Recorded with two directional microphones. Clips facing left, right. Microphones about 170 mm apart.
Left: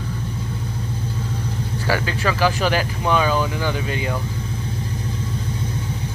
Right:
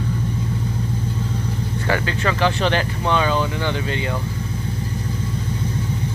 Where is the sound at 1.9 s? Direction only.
10° left (ahead or behind).